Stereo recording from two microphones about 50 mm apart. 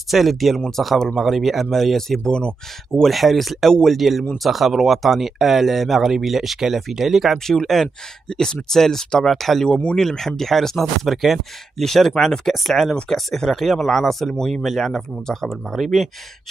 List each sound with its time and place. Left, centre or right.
0.1 s speech: centre
1.2 s speech: centre
3.1 s speech: centre
7.4 s speech: centre
9.7 s speech: left
9.9 s speech: centre